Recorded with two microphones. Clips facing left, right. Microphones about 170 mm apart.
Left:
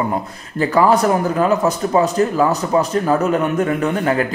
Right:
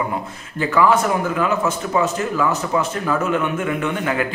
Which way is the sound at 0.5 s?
35° left (ahead or behind).